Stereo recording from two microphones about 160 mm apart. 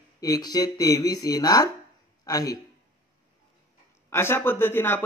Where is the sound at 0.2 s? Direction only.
25° left (ahead or behind).